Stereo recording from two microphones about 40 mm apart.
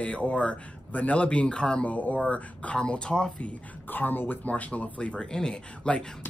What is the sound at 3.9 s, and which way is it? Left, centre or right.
Speech, left.